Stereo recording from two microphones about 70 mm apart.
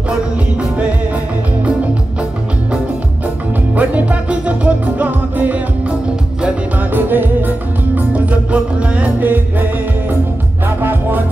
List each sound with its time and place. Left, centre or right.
3.7 s music: right